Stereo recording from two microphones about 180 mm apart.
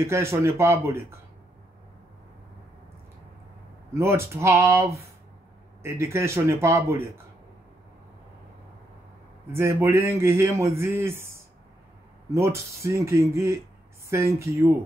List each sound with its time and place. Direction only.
0.0 s a man's voice: 15° right (ahead or behind)
3.9 s a man's voice: 15° right (ahead or behind)
9.5 s a man's voice: 15° right (ahead or behind)